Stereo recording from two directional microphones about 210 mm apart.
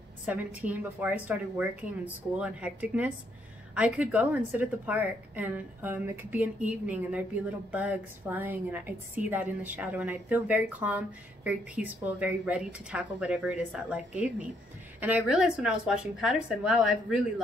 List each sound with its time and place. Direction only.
0.3 s a woman's voice: 5° right (ahead or behind)